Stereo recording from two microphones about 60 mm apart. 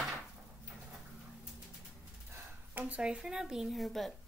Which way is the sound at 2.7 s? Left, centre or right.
Right.